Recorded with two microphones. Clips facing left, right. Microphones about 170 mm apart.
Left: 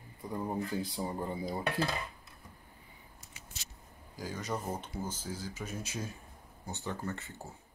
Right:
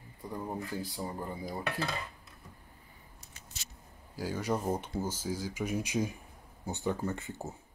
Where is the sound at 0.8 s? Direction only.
25° left (ahead or behind).